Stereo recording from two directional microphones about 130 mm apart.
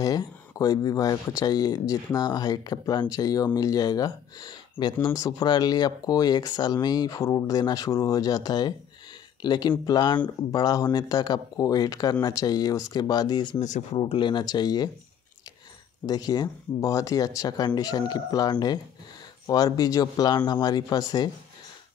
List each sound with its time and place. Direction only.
0.0 s speech: 30° left (ahead or behind)
13.6 s speech: 65° left (ahead or behind)
13.9 s speech: 40° left (ahead or behind)
16.1 s speech: 30° left (ahead or behind)